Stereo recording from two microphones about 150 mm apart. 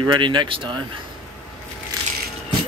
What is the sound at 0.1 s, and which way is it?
Speech, 30° right (ahead or behind).